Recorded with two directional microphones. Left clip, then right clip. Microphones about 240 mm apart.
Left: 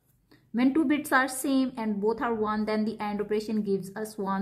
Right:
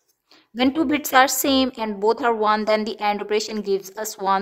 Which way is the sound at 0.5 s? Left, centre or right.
Right.